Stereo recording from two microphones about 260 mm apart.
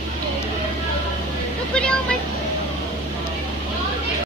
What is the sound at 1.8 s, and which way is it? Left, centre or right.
Vehicle, centre.